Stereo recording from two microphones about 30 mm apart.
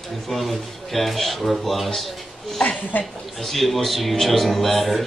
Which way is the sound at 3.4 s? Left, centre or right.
Centre.